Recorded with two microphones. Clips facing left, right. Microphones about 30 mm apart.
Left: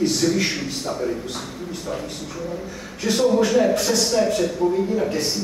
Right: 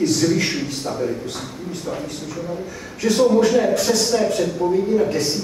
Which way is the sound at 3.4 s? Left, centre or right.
Centre.